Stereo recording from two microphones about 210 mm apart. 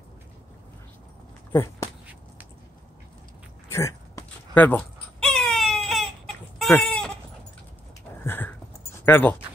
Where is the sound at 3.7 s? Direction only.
15° left (ahead or behind).